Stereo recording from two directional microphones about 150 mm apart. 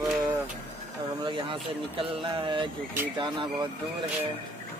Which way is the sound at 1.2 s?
35° right (ahead or behind).